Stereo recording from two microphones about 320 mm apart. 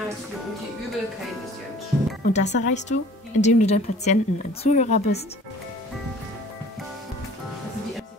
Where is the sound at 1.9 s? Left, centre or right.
Centre.